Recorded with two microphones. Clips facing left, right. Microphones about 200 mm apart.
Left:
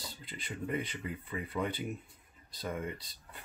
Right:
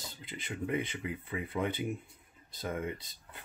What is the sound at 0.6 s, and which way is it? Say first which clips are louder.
Speech: right 2 dB; 5° right (ahead or behind).